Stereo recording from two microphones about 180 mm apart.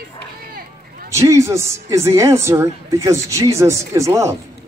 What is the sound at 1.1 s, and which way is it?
Speech, 15° right (ahead or behind).